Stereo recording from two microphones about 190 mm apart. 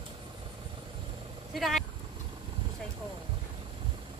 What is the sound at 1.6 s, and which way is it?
Speech, centre (ahead or behind).